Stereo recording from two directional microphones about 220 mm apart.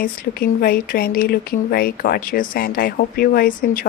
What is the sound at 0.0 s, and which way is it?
Speech, 40° left (ahead or behind).